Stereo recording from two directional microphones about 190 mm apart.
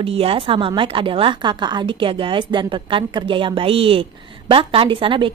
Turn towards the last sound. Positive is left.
turn(degrees=-25)  # may be behind; listen again after turning